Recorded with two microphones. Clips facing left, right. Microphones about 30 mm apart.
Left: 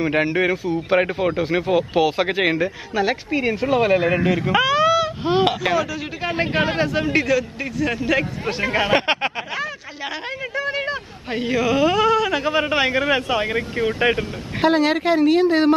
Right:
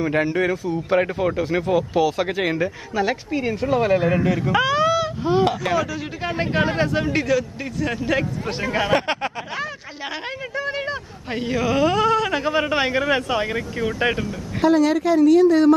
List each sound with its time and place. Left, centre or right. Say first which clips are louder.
0.0 s speech: left 1 dB; left
2.6 s speech: left 1 dB; centre
4.6 s a sound: left 2 dB; centre
5.2 s speech: right 2 dB; left
5.7 s speech: left 1 dB; centre
6.3 s speech: left 1 dB; left
6.8 s a man's voice: left 1 dB; centre
8.7 s speech: left 1 dB; left
10.5 s a man's voice: left 2 dB; centre
12.4 s speech: left 1 dB; centre
12.7 s speech: left 1 dB; centre
13.5 s speech: left 3 dB; left